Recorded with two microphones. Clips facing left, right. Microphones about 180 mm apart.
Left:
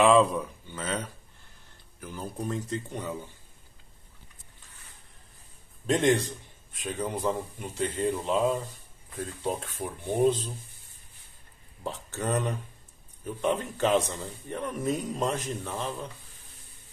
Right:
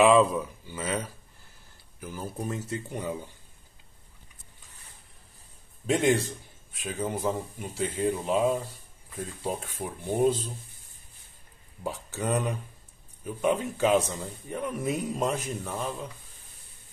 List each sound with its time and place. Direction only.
0.0 s a man's voice: centre (ahead or behind)
5.9 s a man's voice: 5° right (ahead or behind)
11.8 s a man's voice: 10° right (ahead or behind)